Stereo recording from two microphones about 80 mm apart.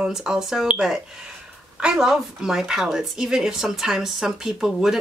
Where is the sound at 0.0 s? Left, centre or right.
Centre.